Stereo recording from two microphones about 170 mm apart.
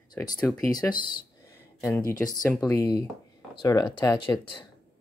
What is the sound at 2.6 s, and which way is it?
Speech, 20° left (ahead or behind).